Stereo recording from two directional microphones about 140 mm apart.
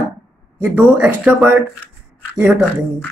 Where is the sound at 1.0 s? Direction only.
10° right (ahead or behind).